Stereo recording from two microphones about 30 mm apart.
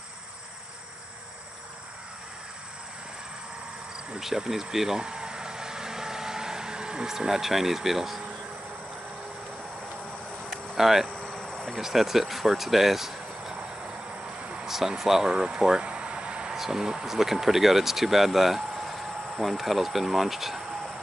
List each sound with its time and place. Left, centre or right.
4.5 s speech: centre
5.0 s vehicle: right
7.1 s speech: centre
10.5 s cricket: centre
11.3 s cricket: centre
11.8 s speech: centre
13.8 s a sound: right
14.7 s speech: centre; by 15.7 s right
15.8 s a sound: right
16.5 s speech: centre